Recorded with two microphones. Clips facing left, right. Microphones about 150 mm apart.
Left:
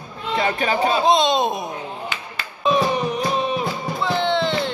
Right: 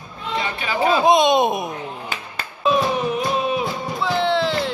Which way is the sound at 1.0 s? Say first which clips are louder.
Right 4 dB; 20° right (ahead or behind).